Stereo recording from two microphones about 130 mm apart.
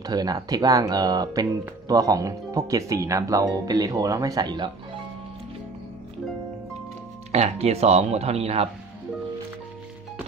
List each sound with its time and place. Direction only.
0.0 s speech: 30° right (ahead or behind)
7.3 s speech: 55° right (ahead or behind)